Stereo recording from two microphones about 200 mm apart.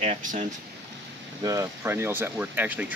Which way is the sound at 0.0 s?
40° right (ahead or behind).